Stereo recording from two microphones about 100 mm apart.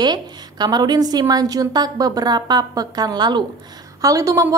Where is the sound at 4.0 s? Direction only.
35° right (ahead or behind).